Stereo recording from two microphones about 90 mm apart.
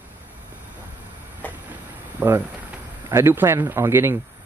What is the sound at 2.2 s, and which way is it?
Speech, 25° right (ahead or behind).